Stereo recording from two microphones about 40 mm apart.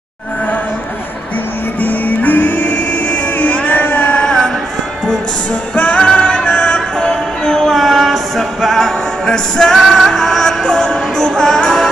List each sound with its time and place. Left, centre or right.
1.8 s music: left
4.2 s a sound: centre
5.8 s music: left
7.0 s music: centre
7.8 s music: centre
9.2 s music: centre